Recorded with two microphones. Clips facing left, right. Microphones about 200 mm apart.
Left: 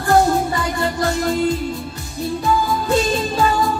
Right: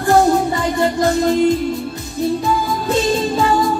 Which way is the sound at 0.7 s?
20° right (ahead or behind).